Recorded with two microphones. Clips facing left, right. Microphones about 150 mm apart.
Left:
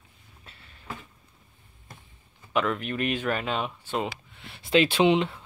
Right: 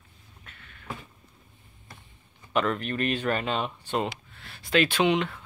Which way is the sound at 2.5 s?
5° left (ahead or behind).